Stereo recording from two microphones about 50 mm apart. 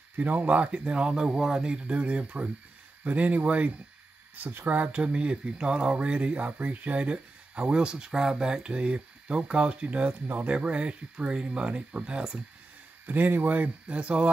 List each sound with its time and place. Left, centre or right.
0.2 s speech: right
10.2 s speech: right
10.5 s speech: right
13.0 s speech: right
13.8 s speech: right